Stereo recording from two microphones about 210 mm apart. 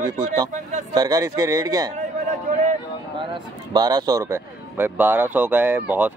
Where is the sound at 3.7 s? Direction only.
20° right (ahead or behind).